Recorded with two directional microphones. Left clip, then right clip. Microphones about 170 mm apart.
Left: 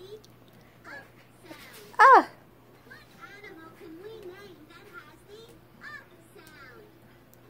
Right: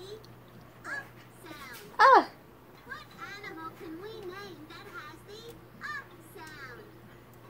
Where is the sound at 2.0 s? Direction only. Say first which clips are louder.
Left 4 dB; 60° left (ahead or behind).